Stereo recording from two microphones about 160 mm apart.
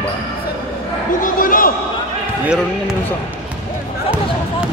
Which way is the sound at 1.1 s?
60° left (ahead or behind).